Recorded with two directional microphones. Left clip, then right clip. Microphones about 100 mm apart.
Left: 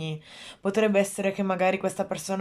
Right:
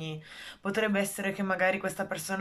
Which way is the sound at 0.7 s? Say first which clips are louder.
Left 6 dB; 35° left (ahead or behind).